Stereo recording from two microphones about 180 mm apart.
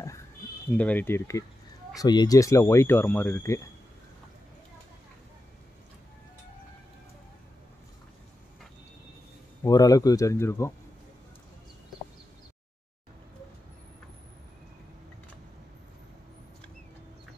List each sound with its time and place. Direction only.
0.7 s speech: 10° left (ahead or behind)
9.6 s speech: 20° left (ahead or behind)